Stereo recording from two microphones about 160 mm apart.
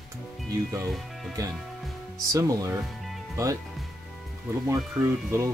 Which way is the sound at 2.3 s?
20° right (ahead or behind).